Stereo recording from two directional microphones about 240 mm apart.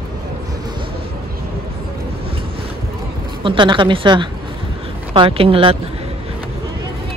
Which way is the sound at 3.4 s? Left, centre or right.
Centre.